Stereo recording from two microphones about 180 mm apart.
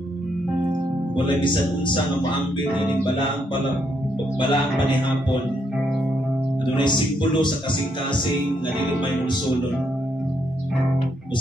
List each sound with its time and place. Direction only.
1.1 s speech: 25° left (ahead or behind)
4.4 s speech: 25° left (ahead or behind)
6.8 s speech: 25° left (ahead or behind)